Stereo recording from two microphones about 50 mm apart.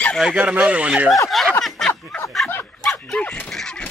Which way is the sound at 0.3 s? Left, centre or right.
Right.